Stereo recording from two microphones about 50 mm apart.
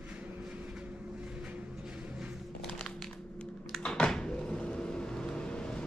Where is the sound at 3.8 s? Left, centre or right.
Centre.